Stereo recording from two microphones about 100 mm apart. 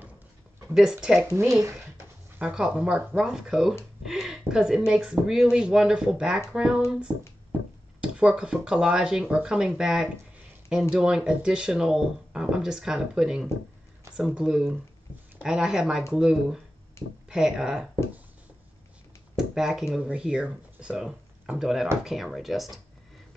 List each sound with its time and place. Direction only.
0.7 s speech: 5° right (ahead or behind)
1.5 s speech: 30° right (ahead or behind)
2.3 s speech: 10° right (ahead or behind)
8.0 s speech: 10° right (ahead or behind)
17.0 s speech: 25° left (ahead or behind)
17.3 s speech: 5° right (ahead or behind)
19.3 s speech: 5° right (ahead or behind)